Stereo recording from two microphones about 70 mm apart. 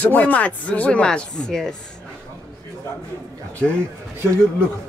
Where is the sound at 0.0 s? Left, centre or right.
Left.